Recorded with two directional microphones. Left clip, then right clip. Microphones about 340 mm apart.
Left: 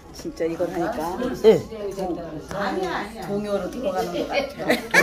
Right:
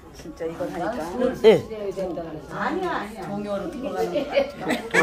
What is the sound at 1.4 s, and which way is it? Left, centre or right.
Speech, centre.